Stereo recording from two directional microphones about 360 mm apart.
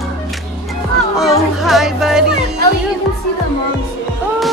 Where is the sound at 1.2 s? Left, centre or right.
Centre.